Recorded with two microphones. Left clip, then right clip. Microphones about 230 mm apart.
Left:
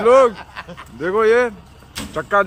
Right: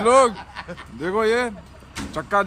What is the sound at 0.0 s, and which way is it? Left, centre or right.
A man's voice, centre.